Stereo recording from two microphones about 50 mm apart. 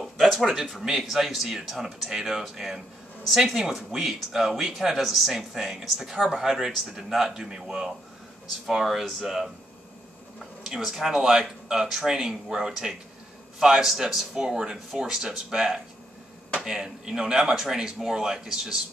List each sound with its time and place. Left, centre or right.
0.0 s a sound: centre
0.8 s speech: centre
10.6 s speech: centre